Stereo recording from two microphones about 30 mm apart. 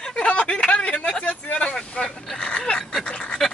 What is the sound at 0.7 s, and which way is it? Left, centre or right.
Speech, left.